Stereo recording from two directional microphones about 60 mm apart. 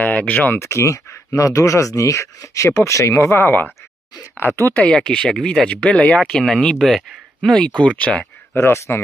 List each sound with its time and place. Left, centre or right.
0.0 s speech: left
0.6 s speech: left
4.9 s speech: centre
8.5 s speech: left